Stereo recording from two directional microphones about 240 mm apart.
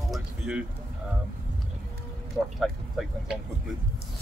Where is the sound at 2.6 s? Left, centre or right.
Centre.